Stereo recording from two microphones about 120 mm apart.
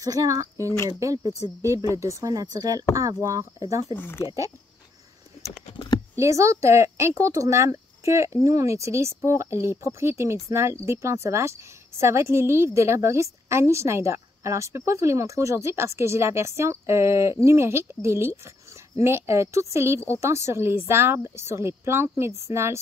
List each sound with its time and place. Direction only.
0.0 s a woman's voice: 30° right (ahead or behind)
3.9 s speech: 20° left (ahead or behind)
6.1 s a woman's voice: 25° right (ahead or behind)